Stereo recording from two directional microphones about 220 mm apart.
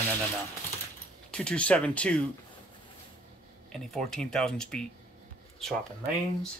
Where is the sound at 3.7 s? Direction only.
Centre (ahead or behind).